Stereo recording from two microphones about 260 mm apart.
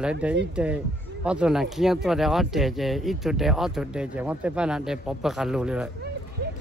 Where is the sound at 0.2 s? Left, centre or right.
Centre.